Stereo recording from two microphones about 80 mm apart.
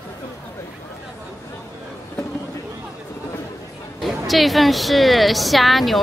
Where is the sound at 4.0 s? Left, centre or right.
Centre.